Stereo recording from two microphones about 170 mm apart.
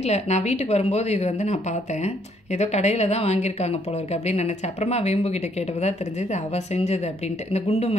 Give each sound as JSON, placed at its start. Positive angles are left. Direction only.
{"t": 0.0, "sound": "speech", "side_deg": 40}